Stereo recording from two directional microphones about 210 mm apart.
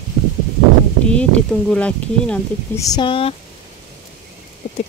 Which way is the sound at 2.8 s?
20° left (ahead or behind).